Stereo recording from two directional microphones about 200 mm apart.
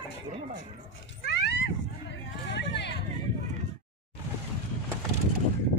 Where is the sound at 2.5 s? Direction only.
60° left (ahead or behind).